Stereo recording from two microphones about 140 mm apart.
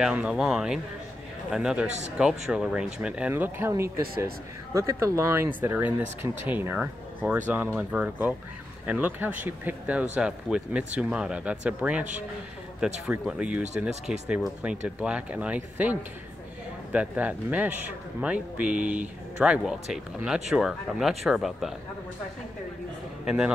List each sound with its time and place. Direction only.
0.0 s speech: 5° right (ahead or behind)
1.9 s speech: 55° right (ahead or behind)
2.1 s a man's voice: 5° right (ahead or behind)
23.2 s a man's voice: 5° right (ahead or behind)